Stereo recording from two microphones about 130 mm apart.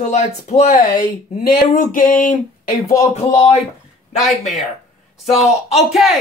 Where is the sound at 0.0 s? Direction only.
60° left (ahead or behind).